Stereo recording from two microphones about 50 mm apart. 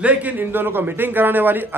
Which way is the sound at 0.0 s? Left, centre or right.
Right.